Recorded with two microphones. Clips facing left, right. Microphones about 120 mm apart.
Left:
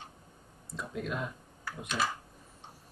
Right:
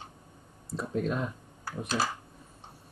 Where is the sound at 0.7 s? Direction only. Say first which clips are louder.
Right 6 dB; 30° right (ahead or behind).